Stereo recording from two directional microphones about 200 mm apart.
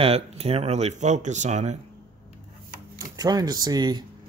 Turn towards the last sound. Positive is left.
turn(degrees=-20)  # may be behind; listen again after turning